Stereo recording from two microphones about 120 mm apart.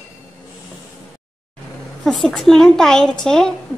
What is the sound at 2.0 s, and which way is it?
A woman's voice, 5° left (ahead or behind).